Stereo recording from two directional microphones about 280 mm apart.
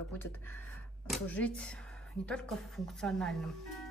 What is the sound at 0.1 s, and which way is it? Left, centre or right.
A woman's voice, centre.